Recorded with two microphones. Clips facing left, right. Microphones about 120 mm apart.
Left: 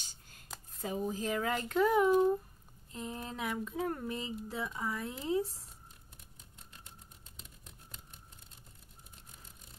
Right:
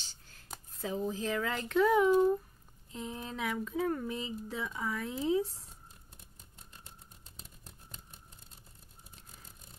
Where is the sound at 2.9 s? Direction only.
40° left (ahead or behind).